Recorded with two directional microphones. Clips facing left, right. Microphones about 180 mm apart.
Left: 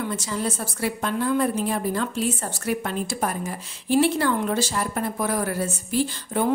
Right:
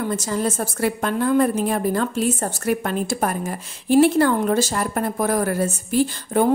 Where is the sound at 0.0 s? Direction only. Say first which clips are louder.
Right 4 dB; 45° right (ahead or behind).